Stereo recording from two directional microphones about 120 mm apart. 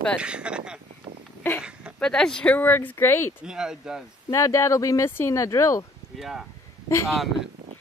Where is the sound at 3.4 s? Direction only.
5° right (ahead or behind).